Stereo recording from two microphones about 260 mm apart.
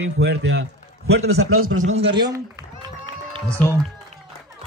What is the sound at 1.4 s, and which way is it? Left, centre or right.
Speech, right.